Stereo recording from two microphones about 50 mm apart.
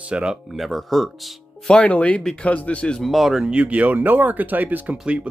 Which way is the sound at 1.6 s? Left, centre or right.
Left.